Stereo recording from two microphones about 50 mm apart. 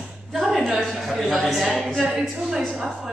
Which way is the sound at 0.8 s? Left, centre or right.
Centre.